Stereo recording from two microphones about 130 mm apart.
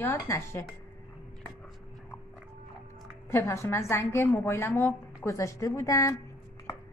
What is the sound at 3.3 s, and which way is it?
A woman's voice, 20° left (ahead or behind).